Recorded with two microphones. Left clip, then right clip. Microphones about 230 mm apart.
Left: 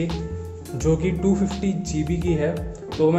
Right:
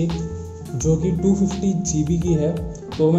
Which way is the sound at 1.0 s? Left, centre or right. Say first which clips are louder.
Right 1 dB; centre.